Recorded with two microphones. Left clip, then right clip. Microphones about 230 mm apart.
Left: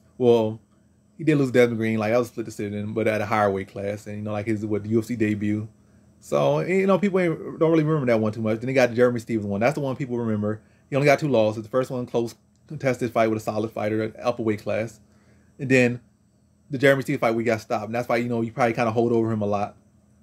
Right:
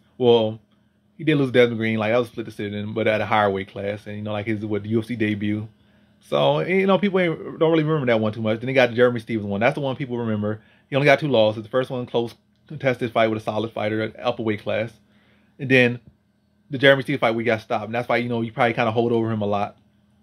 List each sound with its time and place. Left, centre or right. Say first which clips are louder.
0.2 s speech: right 2 dB; centre